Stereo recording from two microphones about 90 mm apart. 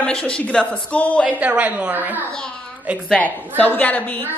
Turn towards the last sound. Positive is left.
turn(degrees=20)  # may be behind; listen again after turning